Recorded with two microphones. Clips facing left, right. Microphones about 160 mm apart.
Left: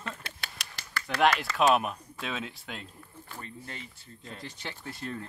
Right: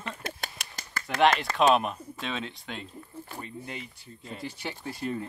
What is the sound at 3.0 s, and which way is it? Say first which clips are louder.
Speech: right 4 dB; 10° right (ahead or behind).